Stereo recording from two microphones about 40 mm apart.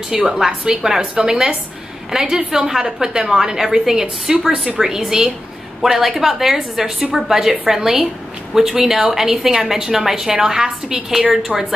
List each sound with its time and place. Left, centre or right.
0.1 s a woman's voice: centre